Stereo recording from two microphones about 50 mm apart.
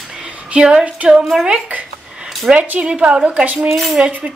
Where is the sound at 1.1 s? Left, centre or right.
Centre.